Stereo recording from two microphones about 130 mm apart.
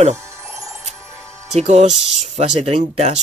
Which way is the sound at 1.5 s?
55° right (ahead or behind).